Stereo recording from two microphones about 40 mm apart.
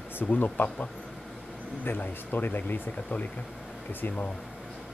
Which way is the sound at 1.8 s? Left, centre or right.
Left.